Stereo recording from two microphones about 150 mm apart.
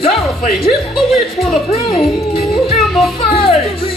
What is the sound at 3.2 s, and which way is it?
Speech, 40° left (ahead or behind).